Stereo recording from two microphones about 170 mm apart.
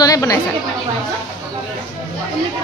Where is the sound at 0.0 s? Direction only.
20° left (ahead or behind).